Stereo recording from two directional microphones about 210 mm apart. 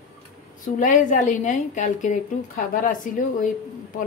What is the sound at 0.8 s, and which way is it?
Speech, 40° left (ahead or behind).